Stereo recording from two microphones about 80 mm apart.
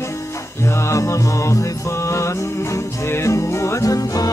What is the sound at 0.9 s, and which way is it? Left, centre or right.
Mantra, left.